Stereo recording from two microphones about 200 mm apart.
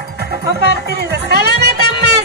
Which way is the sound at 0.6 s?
55° right (ahead or behind).